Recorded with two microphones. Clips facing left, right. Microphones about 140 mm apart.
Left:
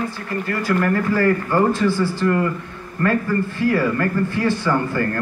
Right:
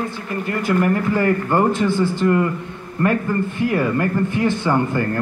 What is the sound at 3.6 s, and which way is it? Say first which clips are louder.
A man's voice: even; 20° right (ahead or behind).